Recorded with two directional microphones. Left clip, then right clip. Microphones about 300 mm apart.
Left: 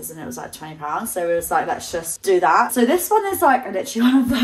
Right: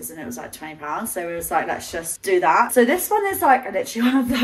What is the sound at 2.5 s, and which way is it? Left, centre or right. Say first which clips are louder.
Speech: even; centre.